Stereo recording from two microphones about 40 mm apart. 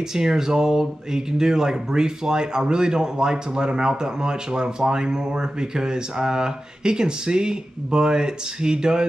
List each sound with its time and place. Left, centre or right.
0.1 s speech: centre